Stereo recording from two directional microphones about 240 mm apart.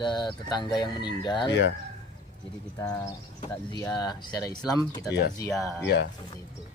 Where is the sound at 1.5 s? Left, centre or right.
Left.